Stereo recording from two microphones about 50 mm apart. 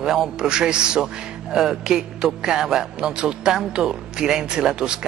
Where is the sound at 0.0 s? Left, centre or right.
Centre.